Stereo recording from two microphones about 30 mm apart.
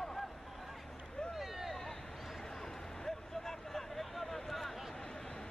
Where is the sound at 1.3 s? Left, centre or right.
Centre.